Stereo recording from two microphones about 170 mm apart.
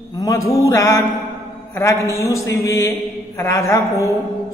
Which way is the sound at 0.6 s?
20° left (ahead or behind).